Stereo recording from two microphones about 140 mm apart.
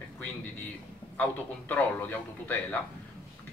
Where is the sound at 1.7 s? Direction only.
10° left (ahead or behind).